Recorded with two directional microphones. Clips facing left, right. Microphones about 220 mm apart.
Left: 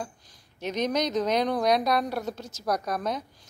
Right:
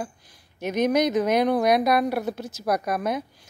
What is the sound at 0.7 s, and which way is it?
A woman's voice, 10° right (ahead or behind).